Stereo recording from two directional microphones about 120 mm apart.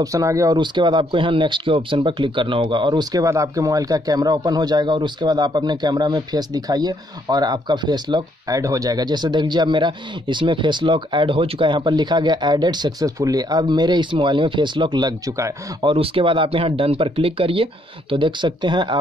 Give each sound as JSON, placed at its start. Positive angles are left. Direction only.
{"t": 0.0, "sound": "speech", "side_deg": -25}
{"t": 0.6, "sound": "speech", "side_deg": -40}
{"t": 15.8, "sound": "speech", "side_deg": -50}